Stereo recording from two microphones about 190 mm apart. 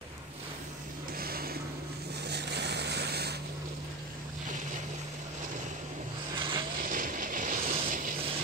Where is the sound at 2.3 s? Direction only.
60° right (ahead or behind).